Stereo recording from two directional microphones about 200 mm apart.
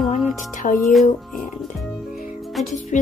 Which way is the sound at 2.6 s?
Centre (ahead or behind).